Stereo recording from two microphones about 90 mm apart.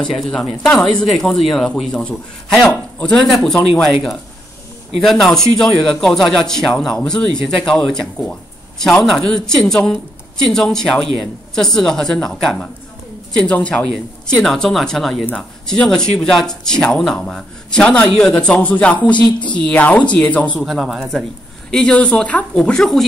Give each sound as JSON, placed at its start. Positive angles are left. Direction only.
{"t": 0.0, "sound": "speech", "side_deg": 5}
{"t": 3.3, "sound": "speech", "side_deg": 0}
{"t": 5.0, "sound": "speech", "side_deg": 5}
{"t": 14.2, "sound": "speech", "side_deg": 5}
{"t": 19.1, "sound": "speech", "side_deg": 60}
{"t": 19.5, "sound": "speech", "side_deg": 15}
{"t": 20.6, "sound": "speech", "side_deg": 0}